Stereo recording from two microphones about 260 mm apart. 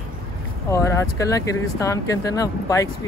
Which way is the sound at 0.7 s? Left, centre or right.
Centre.